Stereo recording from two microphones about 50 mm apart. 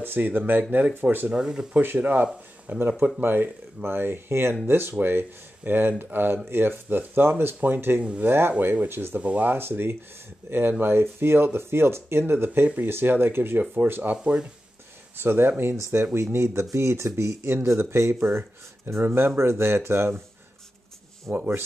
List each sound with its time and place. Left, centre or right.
0.0 s speech: right
1.3 s speech: centre
2.0 s speech: right
2.7 s speech: right
8.0 s speech: right
8.3 s speech: right
9.1 s speech: right
12.6 s speech: right
12.9 s speech: right
14.1 s speech: centre
15.1 s speech: right
19.0 s speech: right
21.3 s speech: centre